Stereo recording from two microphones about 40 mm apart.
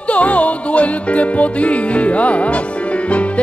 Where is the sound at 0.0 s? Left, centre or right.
Left.